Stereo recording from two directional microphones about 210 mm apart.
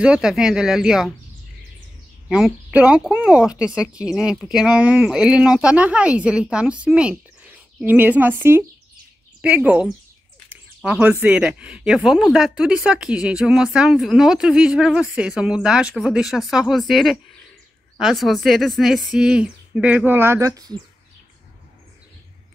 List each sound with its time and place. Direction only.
0.0 s speech: 5° right (ahead or behind)
2.2 s speech: 5° right (ahead or behind)